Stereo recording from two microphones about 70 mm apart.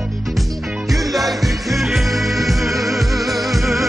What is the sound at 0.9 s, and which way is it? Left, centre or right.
Music, centre.